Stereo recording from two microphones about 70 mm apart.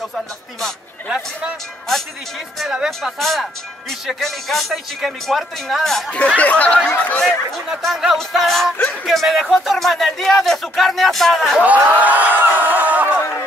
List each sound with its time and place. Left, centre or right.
1.0 s speech: centre
2.6 s speech: centre
3.0 s speech: centre
6.1 s speech: centre
7.8 s speech: centre
11.6 s speech: right